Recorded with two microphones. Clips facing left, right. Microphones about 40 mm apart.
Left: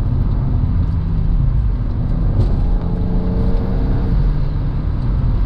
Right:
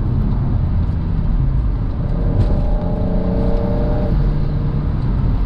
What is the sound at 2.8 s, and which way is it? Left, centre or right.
Vehicle, centre.